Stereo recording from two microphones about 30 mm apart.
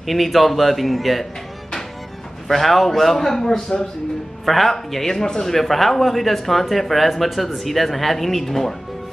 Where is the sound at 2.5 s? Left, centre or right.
Centre.